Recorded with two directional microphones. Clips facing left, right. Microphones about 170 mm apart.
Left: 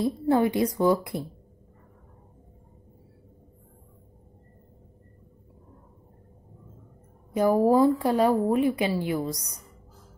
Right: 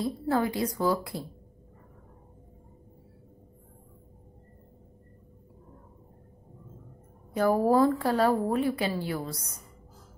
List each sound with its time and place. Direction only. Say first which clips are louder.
0.0 s a woman's voice: left 5 dB; 20° left (ahead or behind)
7.3 s a woman's voice: left 3 dB; 15° left (ahead or behind)